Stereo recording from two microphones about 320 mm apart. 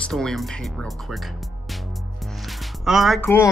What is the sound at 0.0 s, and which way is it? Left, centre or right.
Speech, centre.